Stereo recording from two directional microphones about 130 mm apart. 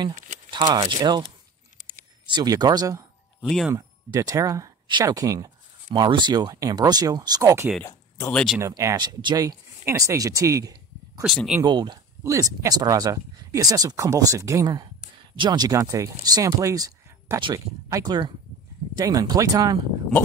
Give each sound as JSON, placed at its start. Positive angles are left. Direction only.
{"t": 0.5, "sound": "speech", "side_deg": -35}
{"t": 1.8, "sound": "a sound", "side_deg": -90}
{"t": 2.3, "sound": "speech", "side_deg": -30}
{"t": 3.4, "sound": "speech", "side_deg": 0}
{"t": 3.7, "sound": "speech", "side_deg": -25}
{"t": 8.3, "sound": "speech", "side_deg": 5}
{"t": 8.5, "sound": "speech", "side_deg": -25}